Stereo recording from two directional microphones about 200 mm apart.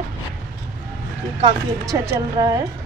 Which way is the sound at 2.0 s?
15° right (ahead or behind).